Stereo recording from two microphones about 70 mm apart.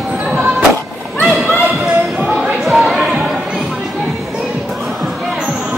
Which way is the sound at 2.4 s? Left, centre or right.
Centre.